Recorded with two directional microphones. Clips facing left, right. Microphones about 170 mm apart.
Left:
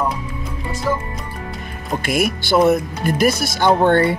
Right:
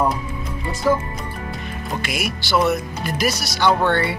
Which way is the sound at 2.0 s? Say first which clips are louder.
Left 10 dB; 50° left (ahead or behind).